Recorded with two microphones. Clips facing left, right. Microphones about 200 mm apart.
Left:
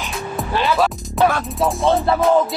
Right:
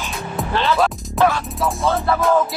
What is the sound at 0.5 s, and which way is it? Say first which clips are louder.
Music: even; 10° left (ahead or behind).